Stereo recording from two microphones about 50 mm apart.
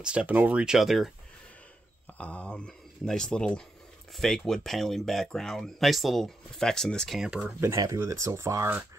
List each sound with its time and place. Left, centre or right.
0.0 s speech: right
0.3 s speech: right
0.7 s speech: centre
2.1 s speech: left
4.1 s speech: centre
7.2 s speech: centre
7.6 s speech: right